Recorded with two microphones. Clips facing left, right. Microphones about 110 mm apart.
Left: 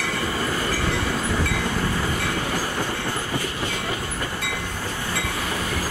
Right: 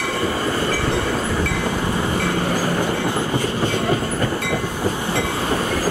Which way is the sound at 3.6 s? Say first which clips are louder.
Right 8 dB; 45° right (ahead or behind).